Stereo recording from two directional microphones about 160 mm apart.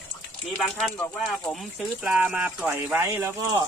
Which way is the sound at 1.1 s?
Centre (ahead or behind).